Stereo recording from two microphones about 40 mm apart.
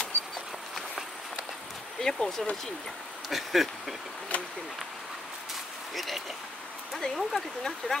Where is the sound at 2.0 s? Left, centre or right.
Centre.